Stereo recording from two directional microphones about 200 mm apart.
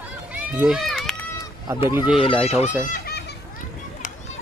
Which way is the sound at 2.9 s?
50° left (ahead or behind).